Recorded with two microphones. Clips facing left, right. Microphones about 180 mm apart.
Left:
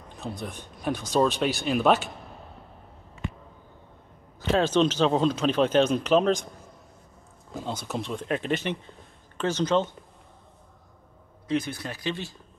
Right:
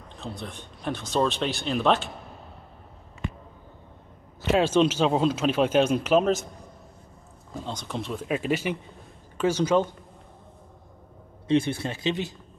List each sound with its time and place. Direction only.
0.4 s speech: 5° left (ahead or behind)
4.5 s speech: 5° right (ahead or behind)
7.6 s speech: 5° left (ahead or behind); by 9.8 s 10° right (ahead or behind)
11.4 s speech: 25° right (ahead or behind)